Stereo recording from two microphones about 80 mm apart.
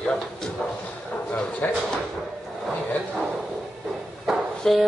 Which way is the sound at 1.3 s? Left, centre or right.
Centre.